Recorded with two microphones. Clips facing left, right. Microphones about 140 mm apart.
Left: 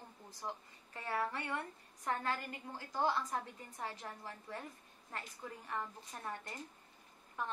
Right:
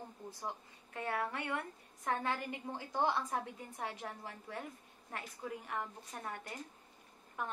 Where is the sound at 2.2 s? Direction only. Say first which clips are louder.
Right 2 dB; 20° right (ahead or behind).